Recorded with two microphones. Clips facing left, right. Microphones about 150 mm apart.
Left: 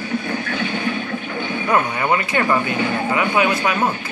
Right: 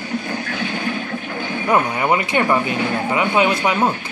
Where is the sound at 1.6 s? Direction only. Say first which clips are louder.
Right 2 dB; 15° right (ahead or behind).